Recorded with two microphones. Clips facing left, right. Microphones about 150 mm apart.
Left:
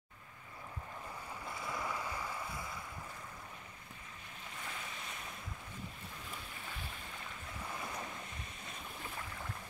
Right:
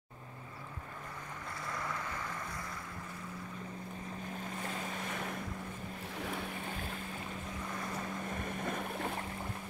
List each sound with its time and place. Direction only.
1.7 s boat: 10° left (ahead or behind)
5.1 s boat: 70° right (ahead or behind)
8.3 s boat: 55° right (ahead or behind)